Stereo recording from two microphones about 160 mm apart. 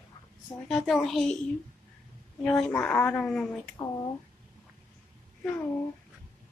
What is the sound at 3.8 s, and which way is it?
Speech, 15° left (ahead or behind).